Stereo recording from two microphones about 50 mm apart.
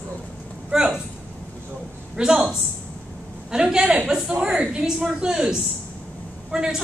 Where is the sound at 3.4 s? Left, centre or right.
Centre.